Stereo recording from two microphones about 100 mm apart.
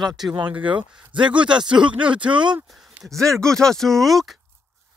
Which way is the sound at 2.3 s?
50° right (ahead or behind).